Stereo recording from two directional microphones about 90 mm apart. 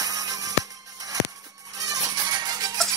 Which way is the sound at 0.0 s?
40° right (ahead or behind).